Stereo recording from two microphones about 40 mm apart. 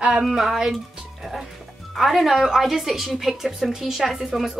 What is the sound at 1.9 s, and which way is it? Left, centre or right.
A woman's voice, centre.